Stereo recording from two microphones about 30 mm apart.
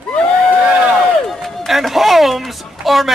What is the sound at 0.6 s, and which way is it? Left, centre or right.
Speech, right.